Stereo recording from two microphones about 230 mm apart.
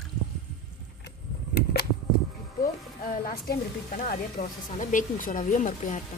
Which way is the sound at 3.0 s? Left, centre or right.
Left.